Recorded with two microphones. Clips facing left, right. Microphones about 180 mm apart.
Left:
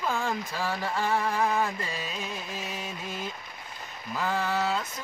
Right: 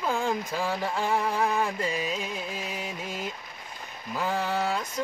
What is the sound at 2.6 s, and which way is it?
Music, 10° right (ahead or behind).